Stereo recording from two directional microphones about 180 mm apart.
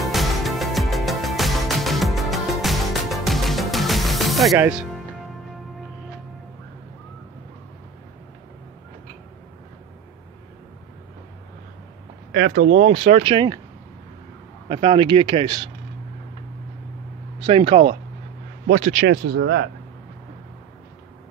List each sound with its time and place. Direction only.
0.0 s music: centre (ahead or behind)
4.6 s speech: 10° right (ahead or behind)
12.3 s speech: 60° right (ahead or behind)
12.6 s speech: 40° right (ahead or behind)
14.7 s speech: 30° right (ahead or behind)
17.4 s speech: 30° right (ahead or behind)
18.8 s speech: 45° right (ahead or behind)
19.0 s speech: 65° right (ahead or behind)